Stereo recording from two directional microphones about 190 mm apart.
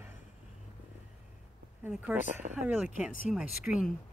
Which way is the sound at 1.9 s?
5° right (ahead or behind).